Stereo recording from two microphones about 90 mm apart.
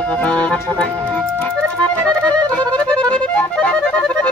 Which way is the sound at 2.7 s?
15° left (ahead or behind).